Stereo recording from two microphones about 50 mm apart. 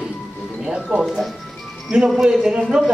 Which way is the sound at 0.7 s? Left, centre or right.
Centre.